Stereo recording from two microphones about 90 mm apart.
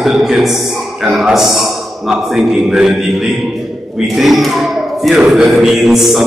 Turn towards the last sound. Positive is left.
turn(degrees=0)  # may be behind; listen again after turning